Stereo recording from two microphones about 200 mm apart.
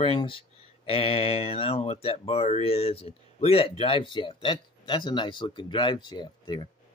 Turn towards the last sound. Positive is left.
turn(degrees=20)  # may be behind; listen again after turning